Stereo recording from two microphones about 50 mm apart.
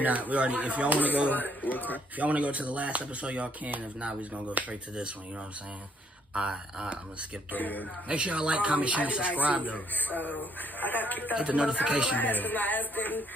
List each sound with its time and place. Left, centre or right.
0.0 s speech: right
1.3 s speech: left
2.1 s speech: right
6.3 s speech: centre
7.5 s speech: left
8.1 s speech: right
9.9 s speech: left
11.3 s speech: right
12.2 s speech: left